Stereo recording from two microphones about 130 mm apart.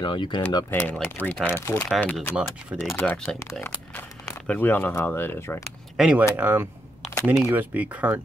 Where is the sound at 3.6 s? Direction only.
15° left (ahead or behind).